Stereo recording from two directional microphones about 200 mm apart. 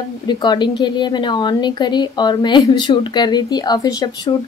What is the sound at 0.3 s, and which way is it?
A woman's voice, 20° left (ahead or behind).